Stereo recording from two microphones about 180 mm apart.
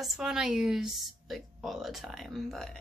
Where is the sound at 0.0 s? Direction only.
Centre (ahead or behind).